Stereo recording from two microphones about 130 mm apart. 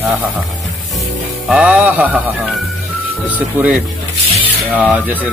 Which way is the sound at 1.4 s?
10° right (ahead or behind).